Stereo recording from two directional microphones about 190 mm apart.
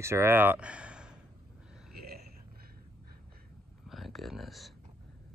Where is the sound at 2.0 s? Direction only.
55° right (ahead or behind).